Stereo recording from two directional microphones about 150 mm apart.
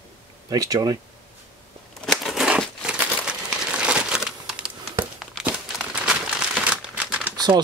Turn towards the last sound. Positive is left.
turn(degrees=-10)  # may be behind; listen again after turning